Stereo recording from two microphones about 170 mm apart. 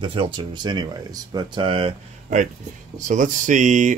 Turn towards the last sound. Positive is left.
turn(degrees=-50)  # may be behind; listen again after turning